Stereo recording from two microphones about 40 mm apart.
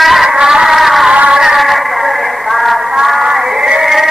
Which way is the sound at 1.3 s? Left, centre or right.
Centre.